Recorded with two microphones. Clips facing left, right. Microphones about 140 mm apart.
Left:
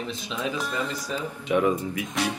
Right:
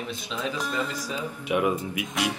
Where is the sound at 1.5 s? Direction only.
10° right (ahead or behind).